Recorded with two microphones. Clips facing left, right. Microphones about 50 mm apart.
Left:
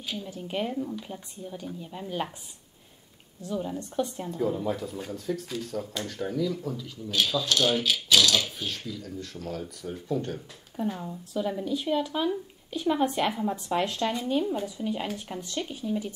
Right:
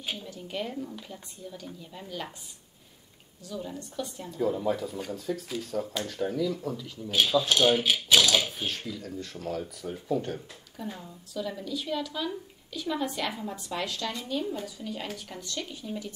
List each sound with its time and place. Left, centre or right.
0.2 s speech: left
3.4 s speech: left
4.4 s speech: centre
7.1 s speech: centre
8.6 s speech: centre
10.8 s speech: left